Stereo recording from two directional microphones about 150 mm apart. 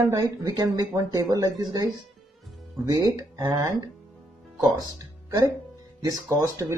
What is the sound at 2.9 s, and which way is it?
Speech, 25° right (ahead or behind).